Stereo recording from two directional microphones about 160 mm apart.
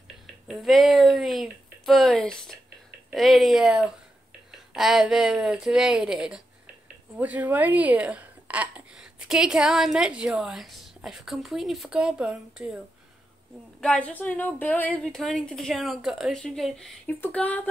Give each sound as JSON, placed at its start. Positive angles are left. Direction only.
{"t": 0.5, "sound": "a woman's voice", "side_deg": 0}
{"t": 13.7, "sound": "a woman's voice", "side_deg": 5}